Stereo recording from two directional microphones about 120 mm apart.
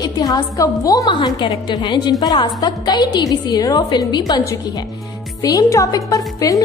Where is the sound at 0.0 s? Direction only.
30° left (ahead or behind).